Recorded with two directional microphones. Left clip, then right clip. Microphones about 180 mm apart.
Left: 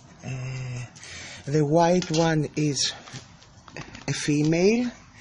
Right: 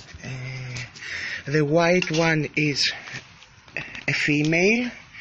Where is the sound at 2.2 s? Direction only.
Centre (ahead or behind).